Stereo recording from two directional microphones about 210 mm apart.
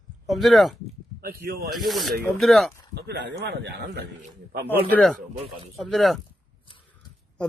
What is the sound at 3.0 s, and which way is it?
Speech, 55° right (ahead or behind).